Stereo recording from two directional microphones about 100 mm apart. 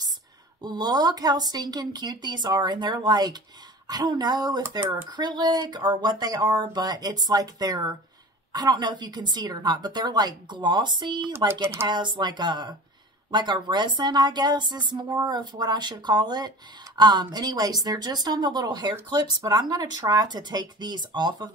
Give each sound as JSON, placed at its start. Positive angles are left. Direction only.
{"t": 0.6, "sound": "speech", "side_deg": -45}
{"t": 11.6, "sound": "speech", "side_deg": -25}
{"t": 11.9, "sound": "speech", "side_deg": -50}